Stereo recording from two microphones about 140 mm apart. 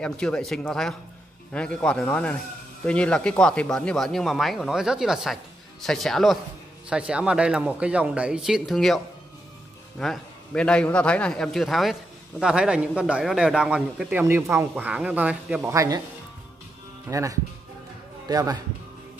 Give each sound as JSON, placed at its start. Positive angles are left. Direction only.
{"t": 0.0, "sound": "a man's voice", "side_deg": 5}
{"t": 14.2, "sound": "speech", "side_deg": -20}
{"t": 15.7, "sound": "speech", "side_deg": -25}
{"t": 17.1, "sound": "speech", "side_deg": -20}